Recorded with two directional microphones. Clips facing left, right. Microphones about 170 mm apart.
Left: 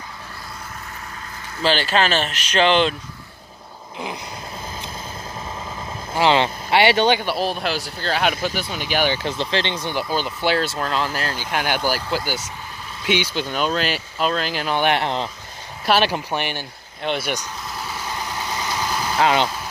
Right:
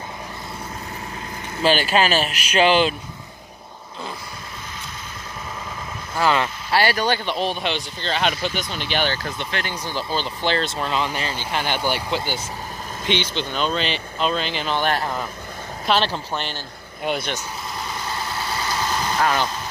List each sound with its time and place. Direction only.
1.6 s speech: 15° right (ahead or behind)
6.2 s speech: 25° left (ahead or behind)
7.2 s speech: 5° left (ahead or behind)
9.2 s speech: 30° left (ahead or behind)
9.9 s speech: 10° left (ahead or behind)
15.8 s speech: 10° left (ahead or behind)
18.0 s vehicle: 15° left (ahead or behind)